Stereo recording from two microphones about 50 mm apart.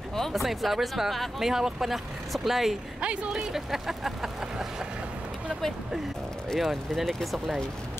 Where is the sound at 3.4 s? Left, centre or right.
Centre.